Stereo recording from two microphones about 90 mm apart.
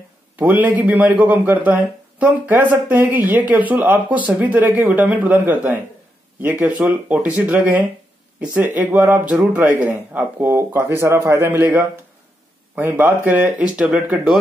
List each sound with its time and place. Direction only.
0.4 s a man's voice: 20° right (ahead or behind)
13.6 s speech: 10° right (ahead or behind)